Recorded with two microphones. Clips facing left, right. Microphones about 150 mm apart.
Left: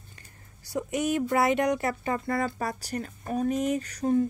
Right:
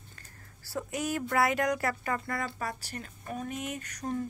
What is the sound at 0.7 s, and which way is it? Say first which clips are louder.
Speech: left 5 dB; 20° left (ahead or behind).